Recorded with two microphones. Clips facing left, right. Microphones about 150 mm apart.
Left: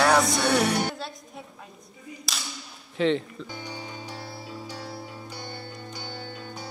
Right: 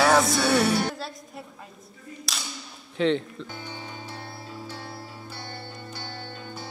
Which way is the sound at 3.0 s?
Centre (ahead or behind).